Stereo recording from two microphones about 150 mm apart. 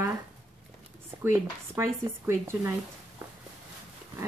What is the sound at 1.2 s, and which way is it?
Speech, 15° right (ahead or behind).